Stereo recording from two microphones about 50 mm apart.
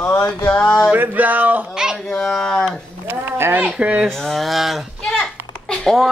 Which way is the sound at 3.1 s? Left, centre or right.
Right.